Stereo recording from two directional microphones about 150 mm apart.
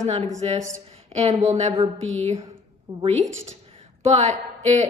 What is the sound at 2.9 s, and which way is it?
Speech, 25° right (ahead or behind).